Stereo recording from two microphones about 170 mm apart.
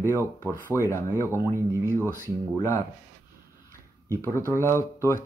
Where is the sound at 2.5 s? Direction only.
15° left (ahead or behind).